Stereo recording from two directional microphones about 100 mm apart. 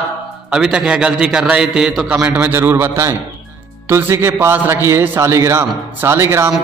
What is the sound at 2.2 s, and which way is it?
A man's voice, 20° right (ahead or behind).